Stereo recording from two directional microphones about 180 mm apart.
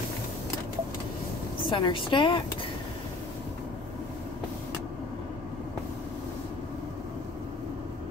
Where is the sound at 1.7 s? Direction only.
30° left (ahead or behind).